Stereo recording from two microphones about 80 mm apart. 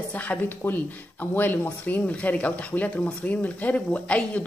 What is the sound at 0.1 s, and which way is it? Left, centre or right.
Speech, left.